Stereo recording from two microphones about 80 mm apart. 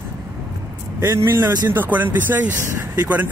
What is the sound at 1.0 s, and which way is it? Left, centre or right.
Speech, right.